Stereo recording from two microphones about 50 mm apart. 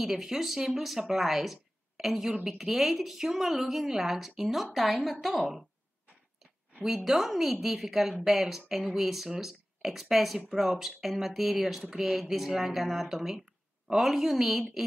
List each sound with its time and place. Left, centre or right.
0.0 s a woman's voice: centre
7.1 s a woman's voice: centre